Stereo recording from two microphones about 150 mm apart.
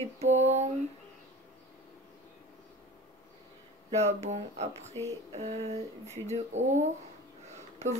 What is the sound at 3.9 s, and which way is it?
Speech, 50° right (ahead or behind).